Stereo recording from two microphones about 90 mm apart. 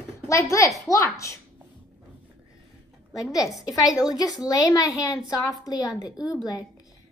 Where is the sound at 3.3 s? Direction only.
40° left (ahead or behind).